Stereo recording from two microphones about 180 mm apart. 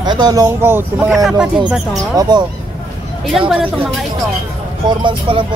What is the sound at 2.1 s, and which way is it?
Speech, 20° right (ahead or behind).